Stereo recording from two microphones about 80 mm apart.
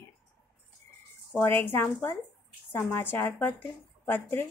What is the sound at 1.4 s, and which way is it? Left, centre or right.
Speech, left.